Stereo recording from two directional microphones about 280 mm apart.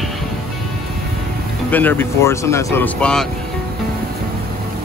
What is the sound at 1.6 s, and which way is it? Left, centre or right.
Speech, centre.